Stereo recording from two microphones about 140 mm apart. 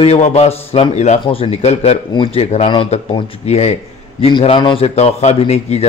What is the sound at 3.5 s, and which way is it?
A man's voice, 50° left (ahead or behind).